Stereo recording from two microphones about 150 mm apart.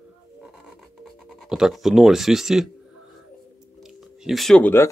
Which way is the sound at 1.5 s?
Centre (ahead or behind).